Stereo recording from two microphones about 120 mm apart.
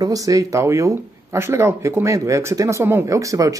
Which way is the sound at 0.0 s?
30° right (ahead or behind).